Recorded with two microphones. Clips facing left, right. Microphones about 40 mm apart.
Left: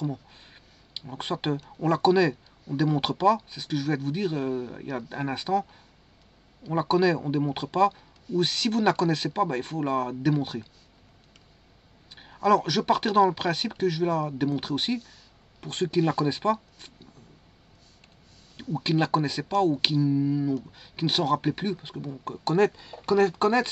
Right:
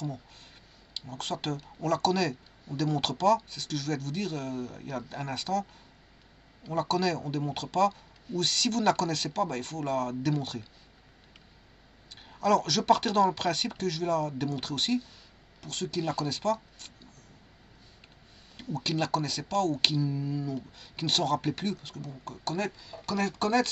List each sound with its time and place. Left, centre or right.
0.0 s a sound: centre
1.8 s speech: left
12.2 s speech: centre
15.6 s speech: left
18.6 s speech: centre